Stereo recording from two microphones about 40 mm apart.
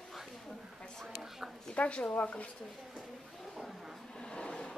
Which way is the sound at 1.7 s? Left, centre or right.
Left.